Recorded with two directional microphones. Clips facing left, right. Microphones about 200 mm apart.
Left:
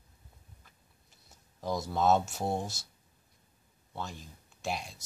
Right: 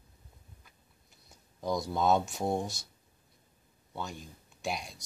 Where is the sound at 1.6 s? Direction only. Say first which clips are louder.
Even; 5° left (ahead or behind).